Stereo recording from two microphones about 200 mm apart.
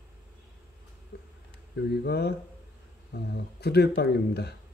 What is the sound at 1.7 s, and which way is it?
Speech, 55° left (ahead or behind).